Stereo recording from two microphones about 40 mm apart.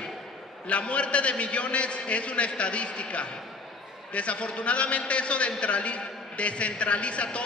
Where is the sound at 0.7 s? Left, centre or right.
Left.